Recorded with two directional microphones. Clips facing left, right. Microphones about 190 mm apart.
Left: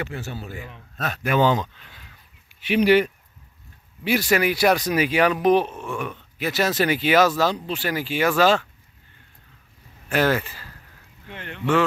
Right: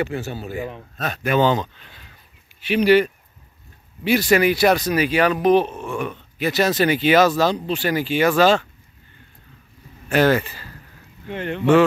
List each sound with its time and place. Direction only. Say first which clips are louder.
0.0 s speech: right 6 dB; 15° right (ahead or behind)
0.9 s speech: right 2 dB; 5° left (ahead or behind)
10.0 s speech: right 4 dB; centre (ahead or behind)
11.2 s speech: right 7 dB; 25° right (ahead or behind)